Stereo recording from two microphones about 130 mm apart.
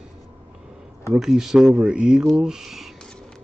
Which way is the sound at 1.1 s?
5° right (ahead or behind).